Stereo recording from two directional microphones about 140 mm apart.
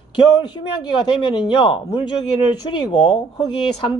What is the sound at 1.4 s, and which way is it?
Speech, 40° left (ahead or behind).